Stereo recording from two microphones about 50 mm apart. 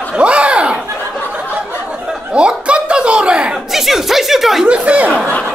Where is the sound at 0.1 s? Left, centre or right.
Right.